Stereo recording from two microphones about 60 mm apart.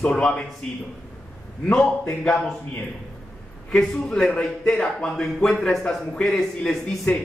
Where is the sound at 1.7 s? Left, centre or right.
Centre.